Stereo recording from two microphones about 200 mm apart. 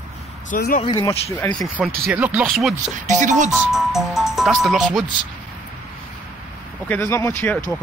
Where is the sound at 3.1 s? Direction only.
40° right (ahead or behind).